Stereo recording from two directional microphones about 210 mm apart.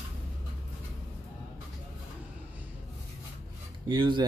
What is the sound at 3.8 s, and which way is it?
Filing, 20° right (ahead or behind).